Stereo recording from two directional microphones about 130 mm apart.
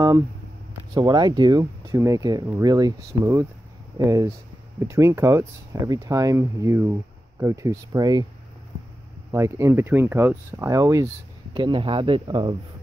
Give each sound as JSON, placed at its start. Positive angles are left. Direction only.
{"t": 0.9, "sound": "speech", "side_deg": -35}
{"t": 9.3, "sound": "speech", "side_deg": -20}
{"t": 11.5, "sound": "speech", "side_deg": -40}